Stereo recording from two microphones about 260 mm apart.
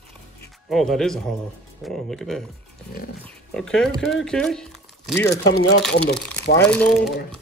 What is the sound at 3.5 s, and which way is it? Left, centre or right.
Speech, centre.